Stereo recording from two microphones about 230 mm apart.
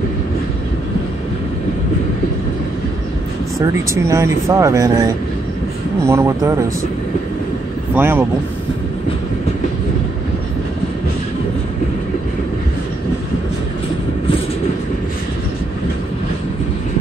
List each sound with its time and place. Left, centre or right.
3.5 s speech: centre
7.9 s speech: centre